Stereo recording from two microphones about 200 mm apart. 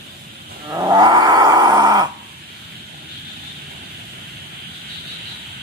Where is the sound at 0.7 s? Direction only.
20° right (ahead or behind).